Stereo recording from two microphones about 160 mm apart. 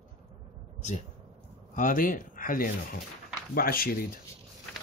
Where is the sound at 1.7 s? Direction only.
55° left (ahead or behind).